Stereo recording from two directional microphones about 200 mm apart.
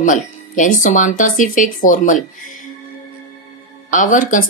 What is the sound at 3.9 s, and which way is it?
Speech, 40° left (ahead or behind).